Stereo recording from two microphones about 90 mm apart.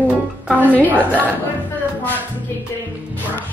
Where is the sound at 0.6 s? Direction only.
20° left (ahead or behind).